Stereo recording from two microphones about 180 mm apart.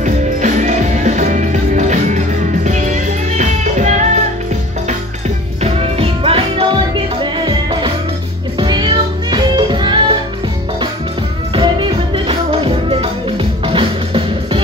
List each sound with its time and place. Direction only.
0.0 s music: 45° right (ahead or behind)
5.6 s music: 30° right (ahead or behind)
11.5 s music: 30° right (ahead or behind)